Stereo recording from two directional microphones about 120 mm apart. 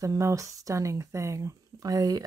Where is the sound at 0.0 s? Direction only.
25° right (ahead or behind).